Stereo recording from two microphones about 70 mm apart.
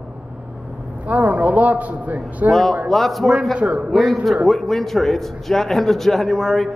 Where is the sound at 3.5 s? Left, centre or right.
Centre.